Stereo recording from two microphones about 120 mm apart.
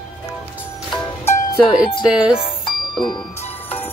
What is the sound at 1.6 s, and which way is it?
Speech, 45° left (ahead or behind).